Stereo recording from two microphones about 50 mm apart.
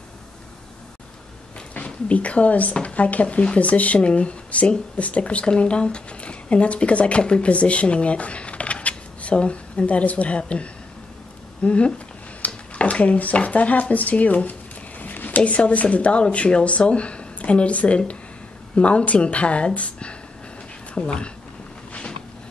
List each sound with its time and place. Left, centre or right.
1.9 s speech: left